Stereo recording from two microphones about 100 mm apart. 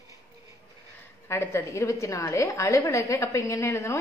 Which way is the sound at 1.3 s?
25° left (ahead or behind).